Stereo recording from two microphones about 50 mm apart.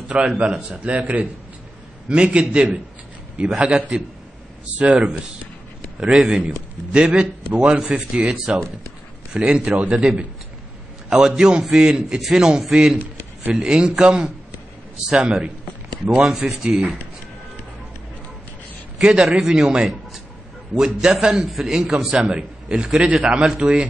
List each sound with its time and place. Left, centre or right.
0.1 s a man's voice: centre
0.9 s a man's voice: right
11.1 s a man's voice: centre
16.3 s a man's voice: centre
18.9 s a man's voice: centre